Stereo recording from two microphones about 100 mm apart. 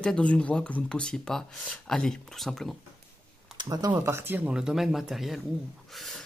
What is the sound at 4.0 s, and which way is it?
Speech, 25° right (ahead or behind).